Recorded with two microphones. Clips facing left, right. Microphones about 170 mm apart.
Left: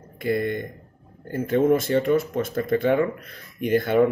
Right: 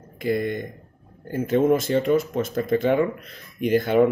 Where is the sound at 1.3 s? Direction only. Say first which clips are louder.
Even; 10° right (ahead or behind).